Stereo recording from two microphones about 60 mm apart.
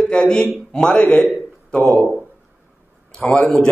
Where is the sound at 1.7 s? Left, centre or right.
Centre.